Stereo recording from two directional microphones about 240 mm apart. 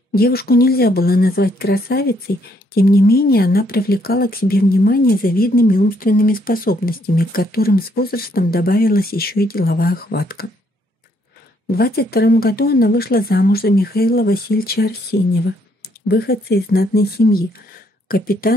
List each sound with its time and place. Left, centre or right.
0.1 s speech: left
11.7 s speech: left